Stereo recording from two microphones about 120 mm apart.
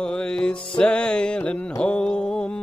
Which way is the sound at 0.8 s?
10° left (ahead or behind).